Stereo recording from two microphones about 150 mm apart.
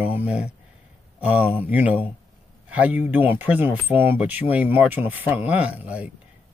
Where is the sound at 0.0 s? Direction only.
10° right (ahead or behind).